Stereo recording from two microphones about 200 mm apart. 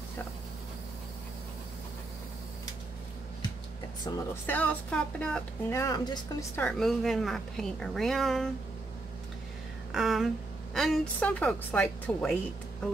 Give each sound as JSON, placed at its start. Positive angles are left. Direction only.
{"t": 4.1, "sound": "speech", "side_deg": 20}
{"t": 4.5, "sound": "speech", "side_deg": 5}
{"t": 6.6, "sound": "a woman's voice", "side_deg": 5}
{"t": 9.9, "sound": "a woman's voice", "side_deg": 0}